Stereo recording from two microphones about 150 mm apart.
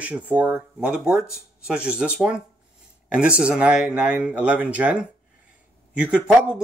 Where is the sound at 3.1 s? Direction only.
5° right (ahead or behind).